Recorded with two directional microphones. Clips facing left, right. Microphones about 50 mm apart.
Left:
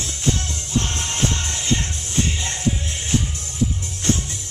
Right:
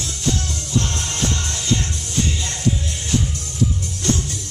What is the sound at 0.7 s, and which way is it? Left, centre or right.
Music, left.